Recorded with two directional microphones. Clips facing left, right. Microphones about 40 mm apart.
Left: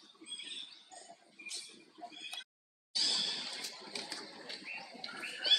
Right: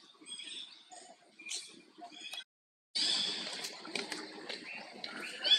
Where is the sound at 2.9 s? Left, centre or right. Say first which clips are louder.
Right 1 dB; right.